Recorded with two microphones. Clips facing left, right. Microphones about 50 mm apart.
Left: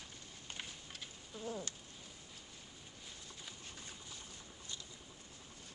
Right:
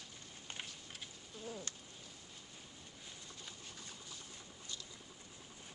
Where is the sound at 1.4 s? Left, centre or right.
Left.